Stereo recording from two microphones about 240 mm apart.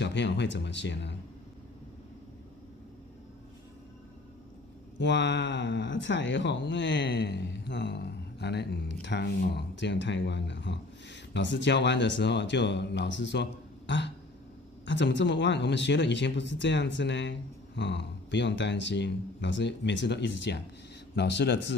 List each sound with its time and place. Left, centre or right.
0.0 s speech: left
4.9 s speech: left